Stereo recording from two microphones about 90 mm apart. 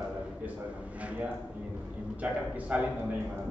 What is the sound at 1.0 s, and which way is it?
A man's voice, 15° right (ahead or behind).